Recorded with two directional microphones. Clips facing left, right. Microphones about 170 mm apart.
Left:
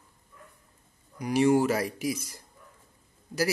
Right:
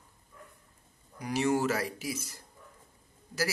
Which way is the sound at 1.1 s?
15° left (ahead or behind).